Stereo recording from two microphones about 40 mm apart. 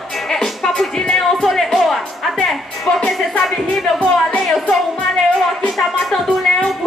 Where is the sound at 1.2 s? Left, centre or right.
Centre.